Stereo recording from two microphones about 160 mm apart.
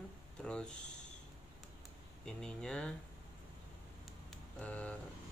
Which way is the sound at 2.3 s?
5° left (ahead or behind).